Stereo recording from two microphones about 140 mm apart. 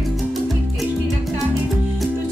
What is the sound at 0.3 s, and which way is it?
Music, centre (ahead or behind).